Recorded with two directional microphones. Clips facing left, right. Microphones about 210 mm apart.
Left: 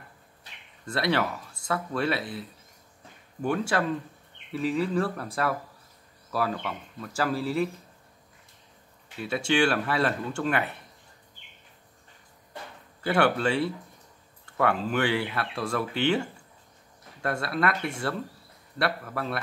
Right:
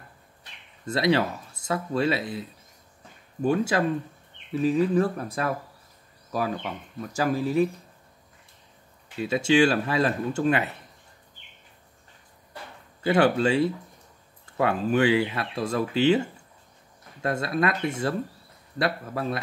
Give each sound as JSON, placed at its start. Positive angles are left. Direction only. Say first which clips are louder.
{"t": 0.8, "sound": "speech", "louder": "right 4 dB", "side_deg": -20}
{"t": 3.4, "sound": "speech", "louder": "right 3 dB", "side_deg": -20}
{"t": 9.3, "sound": "speech", "louder": "right 4 dB", "side_deg": -20}
{"t": 13.0, "sound": "speech", "louder": "right 3 dB", "side_deg": -20}
{"t": 17.2, "sound": "speech", "louder": "right 2 dB", "side_deg": -20}